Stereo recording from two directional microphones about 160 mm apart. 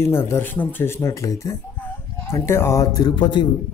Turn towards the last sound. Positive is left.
turn(degrees=30)  # may be behind; listen again after turning